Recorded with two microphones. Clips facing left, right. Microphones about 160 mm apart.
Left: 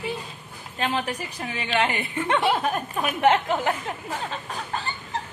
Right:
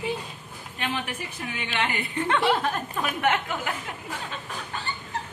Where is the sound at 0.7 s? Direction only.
40° left (ahead or behind).